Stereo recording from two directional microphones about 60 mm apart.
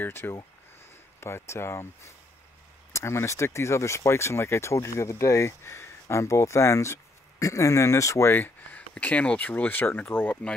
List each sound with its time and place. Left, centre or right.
0.0 s speech: left
9.0 s speech: left